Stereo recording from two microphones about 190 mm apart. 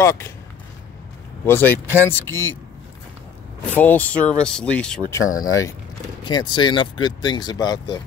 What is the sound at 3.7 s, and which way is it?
Speech, 10° left (ahead or behind).